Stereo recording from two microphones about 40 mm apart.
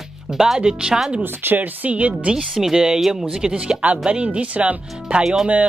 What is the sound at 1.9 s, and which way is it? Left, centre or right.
Speech, right.